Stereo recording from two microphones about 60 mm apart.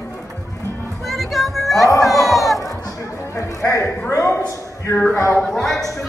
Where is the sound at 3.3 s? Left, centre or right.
Left.